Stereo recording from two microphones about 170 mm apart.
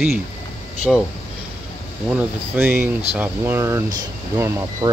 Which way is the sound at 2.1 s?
10° right (ahead or behind).